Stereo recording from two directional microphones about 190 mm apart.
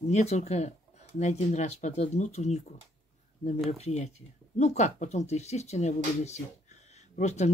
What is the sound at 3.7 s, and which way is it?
Speech, 35° left (ahead or behind).